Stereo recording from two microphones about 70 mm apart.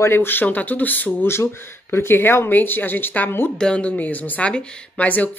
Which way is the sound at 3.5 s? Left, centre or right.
Centre.